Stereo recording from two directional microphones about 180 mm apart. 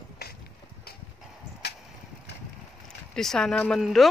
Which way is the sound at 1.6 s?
65° left (ahead or behind).